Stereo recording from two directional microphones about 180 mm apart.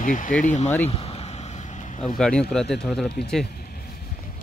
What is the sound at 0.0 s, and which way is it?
Speech, 45° left (ahead or behind).